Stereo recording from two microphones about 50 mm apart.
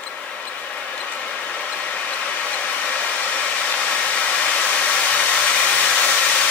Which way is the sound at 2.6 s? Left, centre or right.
Left.